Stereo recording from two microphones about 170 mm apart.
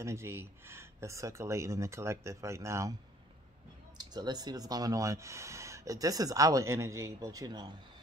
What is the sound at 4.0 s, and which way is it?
Speech, 25° right (ahead or behind).